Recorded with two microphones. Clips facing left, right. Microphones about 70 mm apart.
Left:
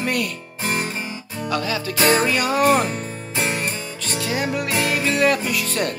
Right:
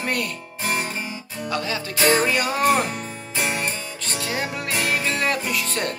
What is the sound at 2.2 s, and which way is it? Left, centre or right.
Speech, right.